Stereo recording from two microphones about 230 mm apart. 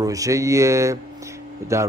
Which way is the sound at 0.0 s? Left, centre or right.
Centre.